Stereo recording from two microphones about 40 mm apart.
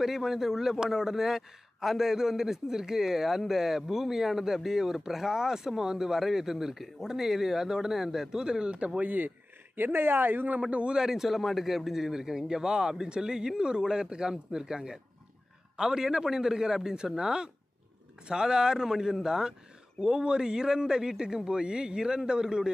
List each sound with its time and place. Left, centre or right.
0.0 s a man's voice: centre; by 9.0 s right
9.0 s speech: right
9.8 s a woman's voice: right
10.6 s a man's voice: right
11.0 s a man's voice: centre